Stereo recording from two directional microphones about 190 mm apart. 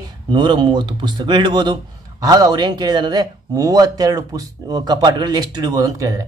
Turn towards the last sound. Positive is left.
turn(degrees=-20)  # may be behind; listen again after turning